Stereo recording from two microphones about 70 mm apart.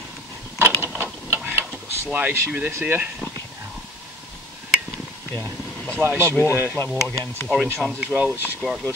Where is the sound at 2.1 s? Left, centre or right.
Right.